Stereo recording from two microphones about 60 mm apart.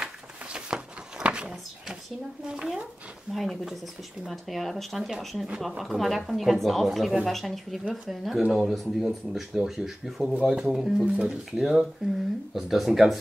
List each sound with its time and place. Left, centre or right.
0.0 s a sound: centre
2.4 s speech: centre
3.3 s speech: centre
11.5 s speech: centre